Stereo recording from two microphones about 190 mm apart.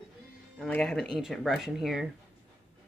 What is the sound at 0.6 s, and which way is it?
Speech, 5° left (ahead or behind).